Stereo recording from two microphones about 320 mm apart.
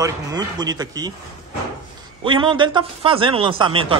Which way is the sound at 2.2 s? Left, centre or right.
Centre.